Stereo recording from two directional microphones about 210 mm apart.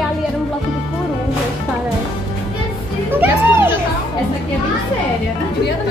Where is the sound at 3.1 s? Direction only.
10° right (ahead or behind).